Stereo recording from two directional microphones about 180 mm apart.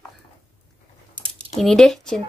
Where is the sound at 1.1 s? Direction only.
30° right (ahead or behind).